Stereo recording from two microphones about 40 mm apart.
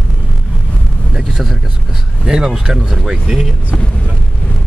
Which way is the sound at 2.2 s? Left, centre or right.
Centre.